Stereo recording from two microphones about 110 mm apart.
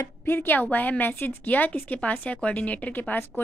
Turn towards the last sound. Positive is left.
turn(degrees=15)  # may be behind; listen again after turning